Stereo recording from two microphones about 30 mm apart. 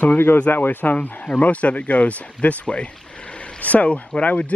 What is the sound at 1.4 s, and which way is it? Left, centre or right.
Speech, left.